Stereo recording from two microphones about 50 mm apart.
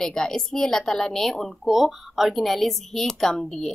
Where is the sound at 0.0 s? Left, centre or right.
Centre.